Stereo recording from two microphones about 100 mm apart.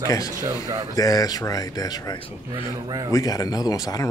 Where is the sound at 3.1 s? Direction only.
35° left (ahead or behind).